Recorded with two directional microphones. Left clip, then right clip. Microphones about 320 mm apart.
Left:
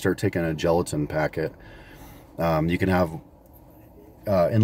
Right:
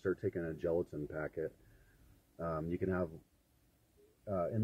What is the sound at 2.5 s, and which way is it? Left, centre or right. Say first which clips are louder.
Speech: left 14 dB; centre.